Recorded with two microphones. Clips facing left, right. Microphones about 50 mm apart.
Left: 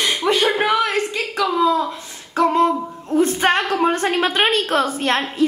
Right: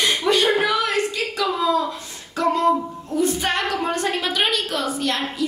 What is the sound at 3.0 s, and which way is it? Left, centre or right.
Speech, left.